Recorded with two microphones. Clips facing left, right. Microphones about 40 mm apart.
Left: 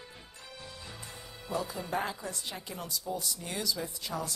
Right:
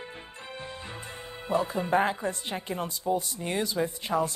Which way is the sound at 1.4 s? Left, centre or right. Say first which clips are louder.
Right 8 dB; right.